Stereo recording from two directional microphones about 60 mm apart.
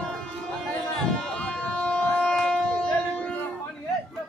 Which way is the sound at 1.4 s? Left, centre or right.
Centre.